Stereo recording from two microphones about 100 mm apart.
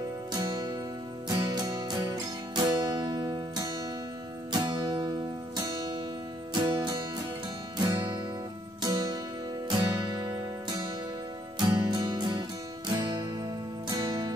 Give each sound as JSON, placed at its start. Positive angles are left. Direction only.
{"t": 0.3, "sound": "music", "side_deg": -40}
{"t": 6.5, "sound": "music", "side_deg": -45}
{"t": 11.5, "sound": "music", "side_deg": -45}